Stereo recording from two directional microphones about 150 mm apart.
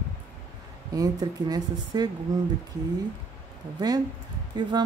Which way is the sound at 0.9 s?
25° right (ahead or behind).